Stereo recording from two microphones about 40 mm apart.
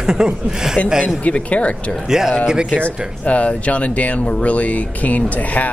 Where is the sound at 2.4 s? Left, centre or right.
Centre.